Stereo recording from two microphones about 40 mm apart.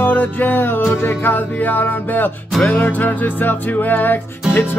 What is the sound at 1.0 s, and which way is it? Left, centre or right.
Music, left.